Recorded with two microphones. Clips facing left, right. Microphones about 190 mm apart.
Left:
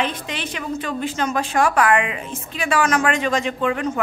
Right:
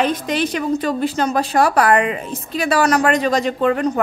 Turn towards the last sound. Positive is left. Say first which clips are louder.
# right 5 dB
turn(degrees=-40)  # may be behind; listen again after turning